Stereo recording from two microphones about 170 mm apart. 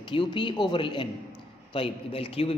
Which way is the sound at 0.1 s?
30° left (ahead or behind).